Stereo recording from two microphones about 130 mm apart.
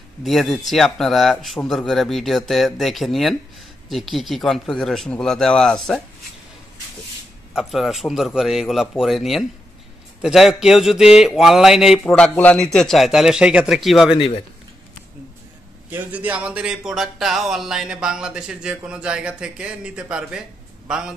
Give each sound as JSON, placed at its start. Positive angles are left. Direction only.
{"t": 0.2, "sound": "speech", "side_deg": 0}
{"t": 7.5, "sound": "speech", "side_deg": 0}
{"t": 12.0, "sound": "speech", "side_deg": 10}
{"t": 14.1, "sound": "speech", "side_deg": 45}
{"t": 15.9, "sound": "speech", "side_deg": -15}